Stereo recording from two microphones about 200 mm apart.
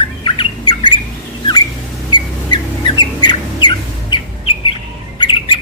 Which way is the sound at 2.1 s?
25° left (ahead or behind).